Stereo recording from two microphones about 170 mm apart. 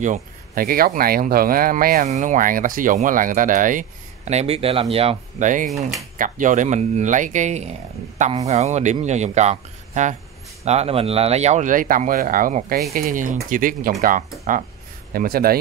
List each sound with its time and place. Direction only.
0.0 s speech: 50° right (ahead or behind)
2.0 s speech: 45° right (ahead or behind)
5.7 s speech: centre (ahead or behind)
6.1 s speech: 50° right (ahead or behind)